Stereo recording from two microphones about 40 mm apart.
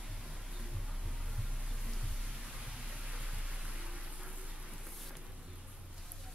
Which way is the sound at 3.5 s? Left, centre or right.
Right.